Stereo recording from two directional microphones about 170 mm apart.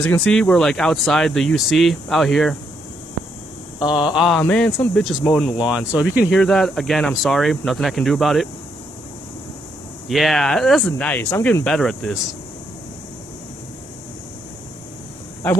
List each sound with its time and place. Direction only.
0.0 s speech: 5° left (ahead or behind)
3.9 s speech: 5° right (ahead or behind)
10.0 s speech: centre (ahead or behind); by 11.6 s 15° left (ahead or behind)
11.6 s speech: 5° left (ahead or behind)